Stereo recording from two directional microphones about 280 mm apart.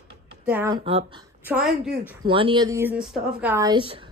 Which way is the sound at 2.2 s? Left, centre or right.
Centre.